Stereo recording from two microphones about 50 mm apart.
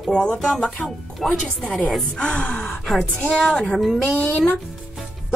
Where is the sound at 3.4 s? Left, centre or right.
Centre.